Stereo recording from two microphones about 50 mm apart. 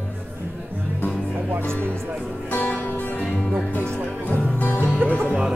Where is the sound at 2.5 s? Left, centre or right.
Left.